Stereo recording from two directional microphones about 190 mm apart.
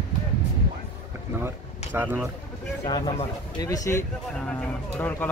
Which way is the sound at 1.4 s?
10° right (ahead or behind).